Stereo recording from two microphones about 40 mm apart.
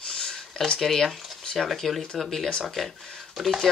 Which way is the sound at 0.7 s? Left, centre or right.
Centre.